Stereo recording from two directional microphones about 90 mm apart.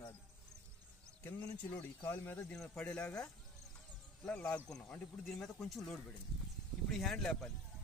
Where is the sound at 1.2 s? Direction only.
20° left (ahead or behind).